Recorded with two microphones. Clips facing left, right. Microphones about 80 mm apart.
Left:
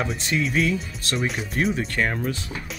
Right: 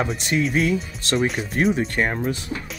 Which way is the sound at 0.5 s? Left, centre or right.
Right.